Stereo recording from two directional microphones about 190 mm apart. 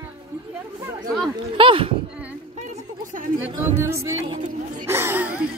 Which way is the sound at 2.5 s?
40° right (ahead or behind).